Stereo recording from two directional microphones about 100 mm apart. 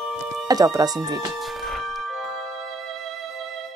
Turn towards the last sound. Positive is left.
turn(degrees=0)  # may be behind; listen again after turning